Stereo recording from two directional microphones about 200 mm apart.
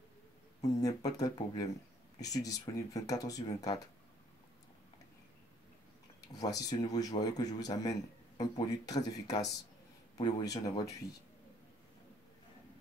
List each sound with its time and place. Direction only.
0.7 s speech: 20° left (ahead or behind)
6.2 s speech: 20° left (ahead or behind)